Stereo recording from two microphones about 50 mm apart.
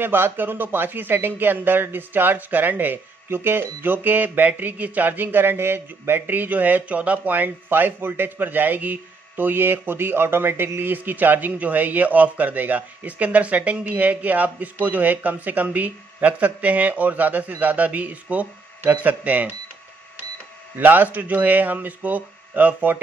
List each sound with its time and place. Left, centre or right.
0.0 s a man's voice: right
20.7 s a man's voice: right